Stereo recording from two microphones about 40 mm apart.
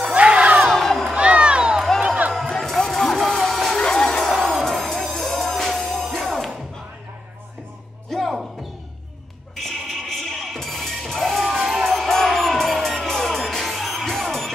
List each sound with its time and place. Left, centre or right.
0.1 s music: right
0.7 s crowd: centre
1.1 s a sound: right
2.4 s a sound: centre
4.6 s music: centre
8.1 s music: centre
9.6 s music: centre